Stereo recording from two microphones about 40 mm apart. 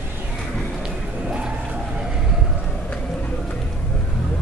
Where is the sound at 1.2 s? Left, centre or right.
Right.